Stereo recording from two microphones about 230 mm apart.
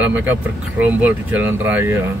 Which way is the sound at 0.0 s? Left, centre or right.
Centre.